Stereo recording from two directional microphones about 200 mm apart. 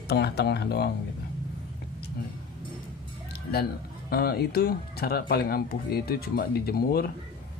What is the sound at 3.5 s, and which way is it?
Speech, 50° left (ahead or behind).